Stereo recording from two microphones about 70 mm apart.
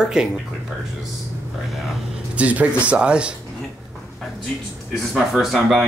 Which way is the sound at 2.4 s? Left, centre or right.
Right.